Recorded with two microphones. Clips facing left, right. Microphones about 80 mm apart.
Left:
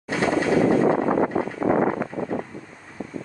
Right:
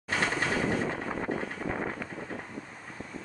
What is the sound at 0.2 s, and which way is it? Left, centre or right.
Mechanisms, left.